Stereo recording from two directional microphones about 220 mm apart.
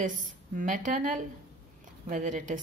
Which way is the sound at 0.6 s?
35° right (ahead or behind).